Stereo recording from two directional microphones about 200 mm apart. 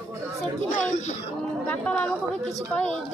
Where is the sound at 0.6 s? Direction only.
40° left (ahead or behind).